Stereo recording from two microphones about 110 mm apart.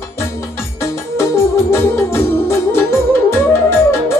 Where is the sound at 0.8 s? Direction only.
25° left (ahead or behind).